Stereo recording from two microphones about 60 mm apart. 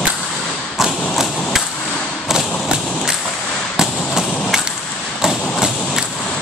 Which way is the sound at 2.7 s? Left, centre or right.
Centre.